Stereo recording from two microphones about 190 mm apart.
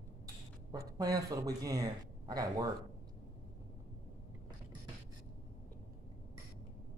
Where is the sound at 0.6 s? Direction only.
20° right (ahead or behind).